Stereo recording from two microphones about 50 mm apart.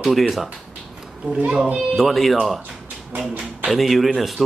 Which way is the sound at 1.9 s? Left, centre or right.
Centre.